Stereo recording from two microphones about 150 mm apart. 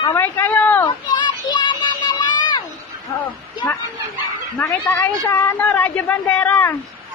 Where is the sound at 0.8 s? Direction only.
30° left (ahead or behind).